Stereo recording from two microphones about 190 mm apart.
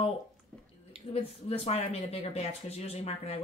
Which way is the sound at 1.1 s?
30° left (ahead or behind).